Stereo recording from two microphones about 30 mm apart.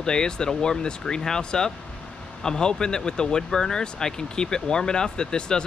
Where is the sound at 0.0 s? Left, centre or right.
Left.